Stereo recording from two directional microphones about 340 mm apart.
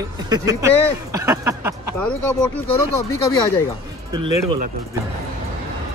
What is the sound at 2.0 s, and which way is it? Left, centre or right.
Speech, centre.